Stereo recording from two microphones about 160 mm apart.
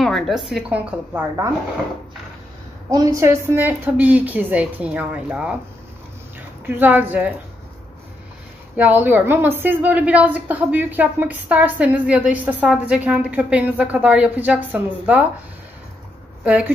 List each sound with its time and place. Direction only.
0.0 s a woman's voice: centre (ahead or behind); by 1.5 s 15° right (ahead or behind)
2.9 s a woman's voice: 20° right (ahead or behind)
6.6 s a woman's voice: 10° right (ahead or behind)
8.7 s a woman's voice: 10° right (ahead or behind)
16.4 s a woman's voice: 10° right (ahead or behind)